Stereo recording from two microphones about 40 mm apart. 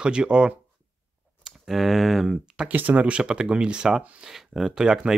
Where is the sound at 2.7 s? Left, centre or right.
Right.